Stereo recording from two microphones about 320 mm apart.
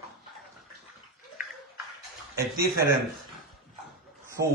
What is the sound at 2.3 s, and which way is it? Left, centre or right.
Speech, centre.